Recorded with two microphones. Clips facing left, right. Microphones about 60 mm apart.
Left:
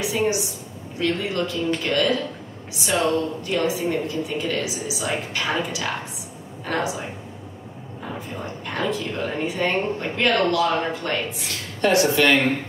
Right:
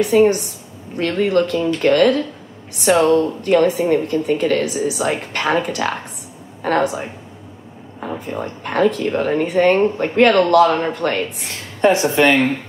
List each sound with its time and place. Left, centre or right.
0.0 s a woman's voice: right
8.4 s a woman's voice: right
11.8 s speech: right